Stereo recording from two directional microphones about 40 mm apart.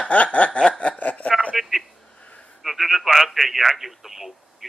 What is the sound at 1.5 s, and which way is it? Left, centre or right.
Speech, centre.